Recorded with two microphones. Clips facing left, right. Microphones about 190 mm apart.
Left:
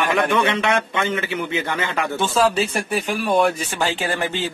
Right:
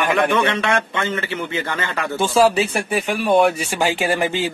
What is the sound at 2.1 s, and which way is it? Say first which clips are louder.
A man's voice: right 4 dB; 10° right (ahead or behind).